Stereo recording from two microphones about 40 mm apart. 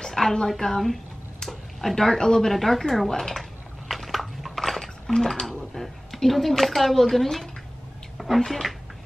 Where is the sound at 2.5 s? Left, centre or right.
Centre.